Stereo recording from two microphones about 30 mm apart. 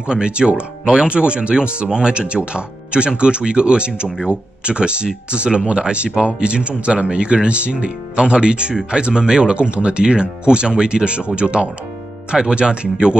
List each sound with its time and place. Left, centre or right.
0.0 s speech: right